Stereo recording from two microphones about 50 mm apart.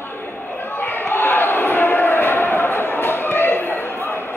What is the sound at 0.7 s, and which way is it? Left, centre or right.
Basketball bounce, left.